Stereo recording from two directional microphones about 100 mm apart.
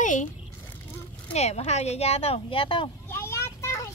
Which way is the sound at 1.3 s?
90° left.